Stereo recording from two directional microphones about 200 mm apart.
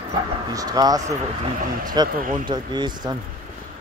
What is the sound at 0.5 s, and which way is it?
Speech, 20° right (ahead or behind).